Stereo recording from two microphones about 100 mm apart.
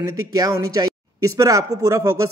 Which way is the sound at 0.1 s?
35° right (ahead or behind).